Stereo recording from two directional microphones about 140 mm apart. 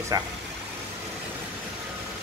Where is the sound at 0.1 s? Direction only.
25° right (ahead or behind).